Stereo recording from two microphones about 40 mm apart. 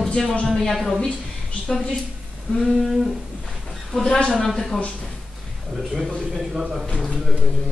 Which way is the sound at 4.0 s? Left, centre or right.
Left.